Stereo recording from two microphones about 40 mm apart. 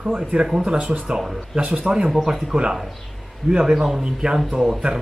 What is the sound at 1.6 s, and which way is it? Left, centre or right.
Speech, right.